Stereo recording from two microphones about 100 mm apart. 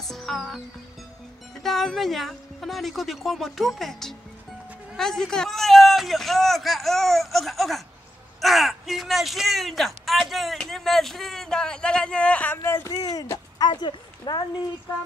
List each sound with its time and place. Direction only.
0.0 s music: centre (ahead or behind)
1.6 s speech: centre (ahead or behind)
12.6 s speech: 35° left (ahead or behind)